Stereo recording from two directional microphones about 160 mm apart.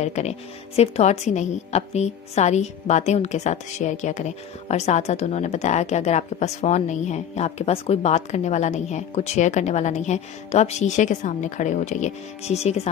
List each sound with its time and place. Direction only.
0.0 s speech: 45° left (ahead or behind)